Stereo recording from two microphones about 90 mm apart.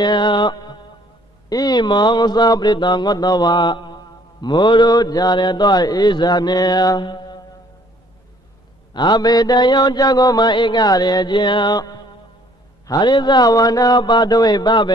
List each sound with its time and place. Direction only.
0.0 s music: 60° left (ahead or behind)
1.5 s mantra: 50° left (ahead or behind)
8.9 s mantra: 55° left (ahead or behind)